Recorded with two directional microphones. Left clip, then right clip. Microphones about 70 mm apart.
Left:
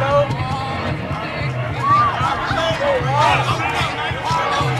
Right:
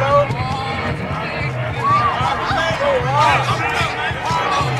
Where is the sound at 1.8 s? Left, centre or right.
Centre.